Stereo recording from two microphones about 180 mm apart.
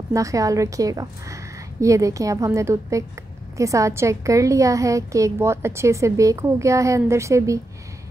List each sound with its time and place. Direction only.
0.1 s a woman's voice: 20° right (ahead or behind)